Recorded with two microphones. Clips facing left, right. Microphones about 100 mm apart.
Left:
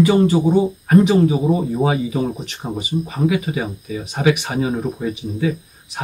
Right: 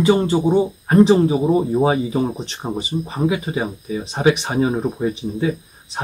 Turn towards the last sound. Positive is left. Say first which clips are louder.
# right 2 dB
turn(degrees=-30)  # may be behind; listen again after turning